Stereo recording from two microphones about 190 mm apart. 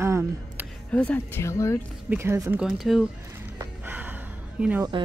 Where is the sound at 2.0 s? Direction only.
15° right (ahead or behind).